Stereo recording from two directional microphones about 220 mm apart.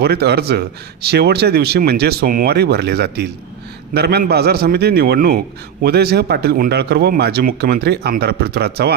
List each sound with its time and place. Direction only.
0.0 s a man's voice: 45° right (ahead or behind)